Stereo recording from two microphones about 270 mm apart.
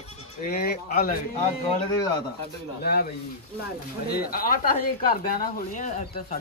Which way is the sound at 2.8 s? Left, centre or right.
Left.